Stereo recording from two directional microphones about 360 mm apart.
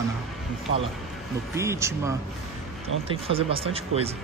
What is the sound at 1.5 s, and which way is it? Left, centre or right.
Speech, centre.